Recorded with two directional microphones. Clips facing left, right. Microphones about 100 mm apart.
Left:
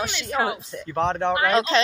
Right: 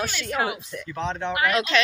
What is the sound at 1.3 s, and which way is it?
Speech, 30° left (ahead or behind).